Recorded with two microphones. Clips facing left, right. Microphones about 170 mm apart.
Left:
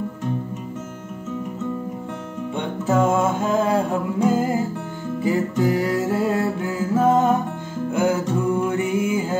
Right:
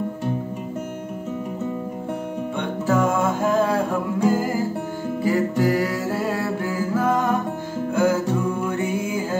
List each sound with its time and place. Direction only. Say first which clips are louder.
2.9 s music: left 2 dB; 20° left (ahead or behind)